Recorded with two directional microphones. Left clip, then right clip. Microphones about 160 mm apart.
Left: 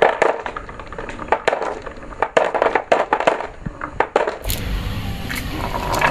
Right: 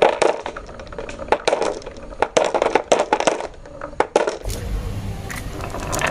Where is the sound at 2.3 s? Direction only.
50° right (ahead or behind).